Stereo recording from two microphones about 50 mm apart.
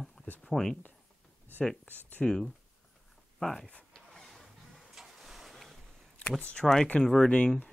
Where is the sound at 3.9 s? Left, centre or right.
Centre.